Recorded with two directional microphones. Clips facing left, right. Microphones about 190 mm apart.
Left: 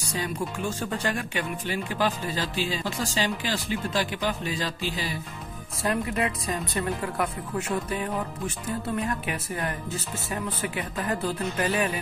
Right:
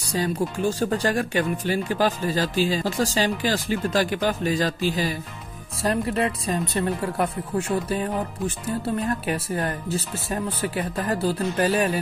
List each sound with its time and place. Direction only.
0.1 s speech: 35° right (ahead or behind)
5.8 s speech: 35° right (ahead or behind)